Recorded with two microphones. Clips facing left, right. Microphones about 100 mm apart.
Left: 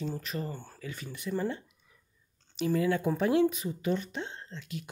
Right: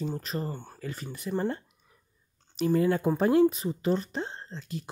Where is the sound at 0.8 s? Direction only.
40° right (ahead or behind).